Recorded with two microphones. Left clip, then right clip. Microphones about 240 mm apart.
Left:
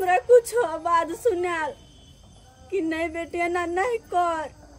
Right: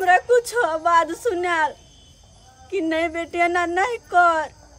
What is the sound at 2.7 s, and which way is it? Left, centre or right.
Speech, centre.